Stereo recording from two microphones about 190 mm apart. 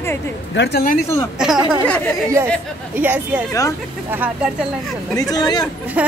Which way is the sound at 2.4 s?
15° right (ahead or behind).